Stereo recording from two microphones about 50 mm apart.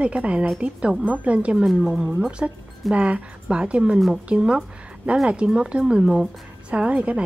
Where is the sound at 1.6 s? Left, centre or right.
Centre.